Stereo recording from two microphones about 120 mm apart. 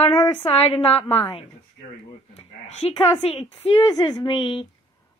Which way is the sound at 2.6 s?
65° left (ahead or behind).